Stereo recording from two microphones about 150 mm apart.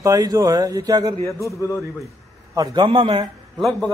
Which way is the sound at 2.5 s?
30° right (ahead or behind).